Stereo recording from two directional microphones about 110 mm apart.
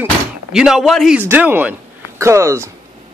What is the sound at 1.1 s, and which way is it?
Speech, 15° right (ahead or behind).